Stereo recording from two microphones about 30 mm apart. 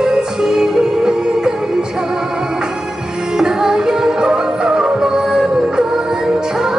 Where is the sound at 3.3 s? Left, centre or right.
Right.